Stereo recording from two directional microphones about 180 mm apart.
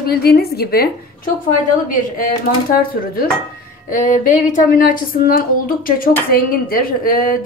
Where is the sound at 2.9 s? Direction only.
55° left (ahead or behind).